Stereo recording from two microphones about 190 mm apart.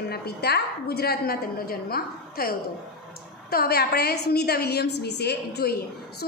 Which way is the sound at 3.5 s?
55° left (ahead or behind).